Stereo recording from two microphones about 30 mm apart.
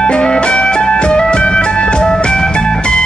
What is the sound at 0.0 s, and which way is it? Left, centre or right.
Music, left.